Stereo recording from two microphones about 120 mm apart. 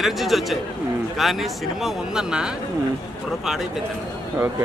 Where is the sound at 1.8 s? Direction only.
5° right (ahead or behind).